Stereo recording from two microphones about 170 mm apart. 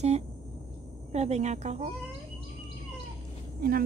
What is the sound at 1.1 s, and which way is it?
Speech, 40° right (ahead or behind).